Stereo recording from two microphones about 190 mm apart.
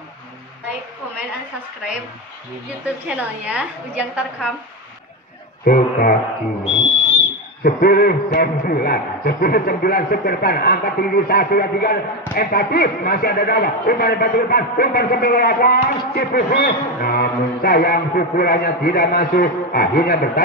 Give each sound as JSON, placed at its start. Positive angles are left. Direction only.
{"t": 2.8, "sound": "a woman's voice", "side_deg": -5}
{"t": 5.7, "sound": "a man's voice", "side_deg": 50}
{"t": 7.6, "sound": "a man's voice", "side_deg": 50}